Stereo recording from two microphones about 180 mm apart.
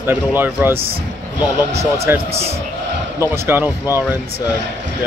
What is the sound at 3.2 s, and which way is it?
Speech, 15° right (ahead or behind).